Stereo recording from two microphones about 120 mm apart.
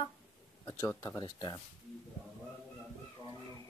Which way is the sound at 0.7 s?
25° left (ahead or behind).